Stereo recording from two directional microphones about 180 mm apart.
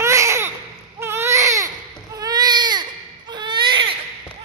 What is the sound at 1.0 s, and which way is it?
Baby cry, 15° right (ahead or behind).